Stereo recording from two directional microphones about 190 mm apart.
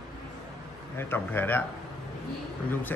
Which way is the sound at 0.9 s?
10° left (ahead or behind).